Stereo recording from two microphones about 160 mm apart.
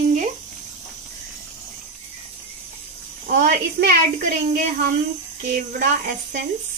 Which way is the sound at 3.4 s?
70° right (ahead or behind).